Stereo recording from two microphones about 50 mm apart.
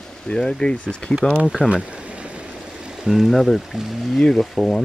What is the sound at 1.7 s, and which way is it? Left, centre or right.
Stream, right.